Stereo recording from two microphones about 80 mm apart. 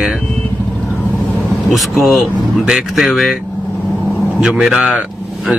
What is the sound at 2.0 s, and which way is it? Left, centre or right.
Speech, centre.